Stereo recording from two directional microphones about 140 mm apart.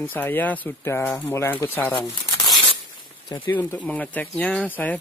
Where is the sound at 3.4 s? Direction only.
15° left (ahead or behind).